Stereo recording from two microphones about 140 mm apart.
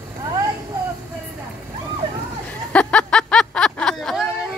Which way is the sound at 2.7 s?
10° left (ahead or behind).